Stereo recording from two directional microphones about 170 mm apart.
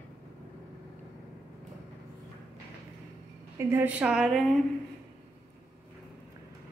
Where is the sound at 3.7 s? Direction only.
10° right (ahead or behind).